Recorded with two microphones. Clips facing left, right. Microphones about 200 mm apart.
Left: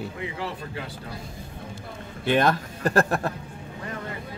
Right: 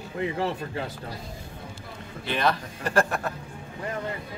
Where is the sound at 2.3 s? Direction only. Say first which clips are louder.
Left 5 dB; 50° left (ahead or behind).